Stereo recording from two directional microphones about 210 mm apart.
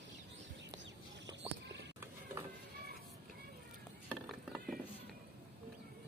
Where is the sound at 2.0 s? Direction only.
10° right (ahead or behind).